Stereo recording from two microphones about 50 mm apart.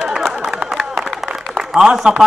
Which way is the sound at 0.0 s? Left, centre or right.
Centre.